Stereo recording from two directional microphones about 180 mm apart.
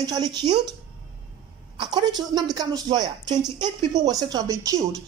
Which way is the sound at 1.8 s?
25° right (ahead or behind).